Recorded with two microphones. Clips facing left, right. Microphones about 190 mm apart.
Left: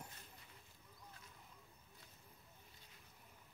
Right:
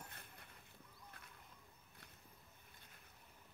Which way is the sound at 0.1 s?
60° right (ahead or behind).